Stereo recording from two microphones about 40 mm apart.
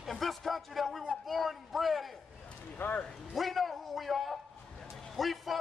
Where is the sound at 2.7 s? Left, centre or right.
Left.